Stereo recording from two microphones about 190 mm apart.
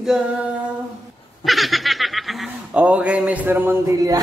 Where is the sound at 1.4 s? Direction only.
Centre (ahead or behind).